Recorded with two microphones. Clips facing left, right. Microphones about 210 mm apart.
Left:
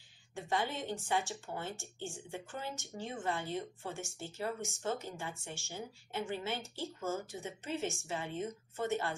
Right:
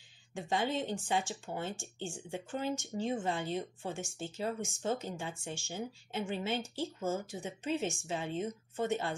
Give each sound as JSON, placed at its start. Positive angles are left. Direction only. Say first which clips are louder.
{"t": 0.3, "sound": "speech", "louder": "right 3 dB", "side_deg": -15}